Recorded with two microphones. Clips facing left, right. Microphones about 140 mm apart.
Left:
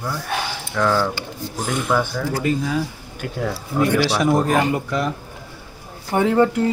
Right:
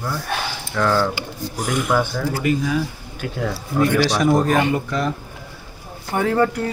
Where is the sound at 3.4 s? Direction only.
5° left (ahead or behind).